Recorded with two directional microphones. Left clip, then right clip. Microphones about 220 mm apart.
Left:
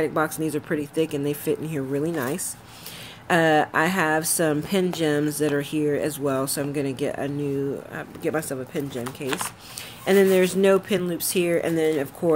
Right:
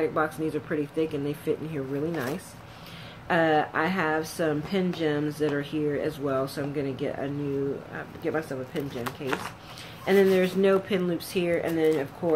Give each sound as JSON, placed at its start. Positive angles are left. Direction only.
{"t": 0.0, "sound": "speech", "side_deg": 45}
{"t": 3.3, "sound": "speech", "side_deg": 50}
{"t": 10.0, "sound": "speech", "side_deg": 45}